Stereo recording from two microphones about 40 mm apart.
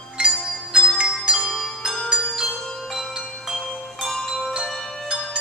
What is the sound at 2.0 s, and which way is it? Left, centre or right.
Bell, right.